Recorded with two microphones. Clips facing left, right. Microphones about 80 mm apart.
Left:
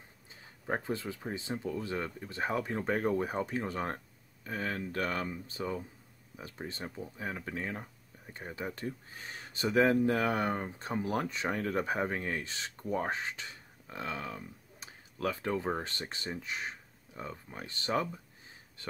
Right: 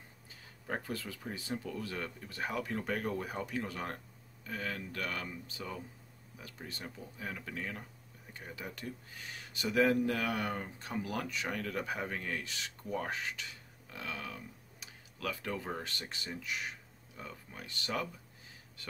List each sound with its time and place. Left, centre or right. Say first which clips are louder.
0.7 s speech: left 5 dB; left